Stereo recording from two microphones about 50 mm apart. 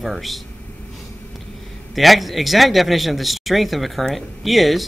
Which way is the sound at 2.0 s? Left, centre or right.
Centre.